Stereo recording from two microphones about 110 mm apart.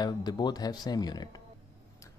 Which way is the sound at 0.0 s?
40° left (ahead or behind).